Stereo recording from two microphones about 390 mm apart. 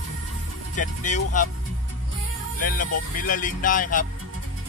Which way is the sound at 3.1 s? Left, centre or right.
Left.